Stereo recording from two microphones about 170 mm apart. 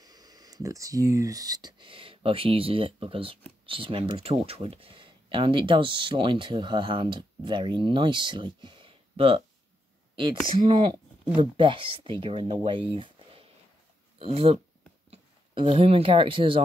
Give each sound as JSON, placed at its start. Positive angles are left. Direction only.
{"t": 0.0, "sound": "speech", "side_deg": -20}